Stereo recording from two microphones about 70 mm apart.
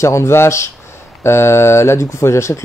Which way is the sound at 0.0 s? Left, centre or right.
Left.